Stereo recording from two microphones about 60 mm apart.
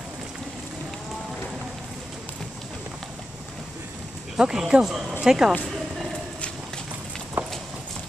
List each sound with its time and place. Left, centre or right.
4.4 s speech: centre
7.4 s clip-clop: right